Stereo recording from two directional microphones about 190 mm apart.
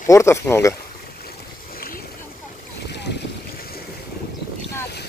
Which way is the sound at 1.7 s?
50° left (ahead or behind).